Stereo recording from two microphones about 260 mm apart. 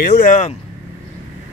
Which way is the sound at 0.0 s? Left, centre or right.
Left.